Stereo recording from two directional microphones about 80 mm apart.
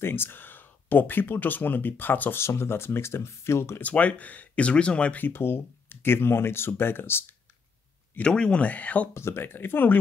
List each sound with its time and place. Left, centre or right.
0.0 s speech: left
3.8 s speech: centre
5.2 s speech: left
8.2 s speech: centre
9.1 s speech: left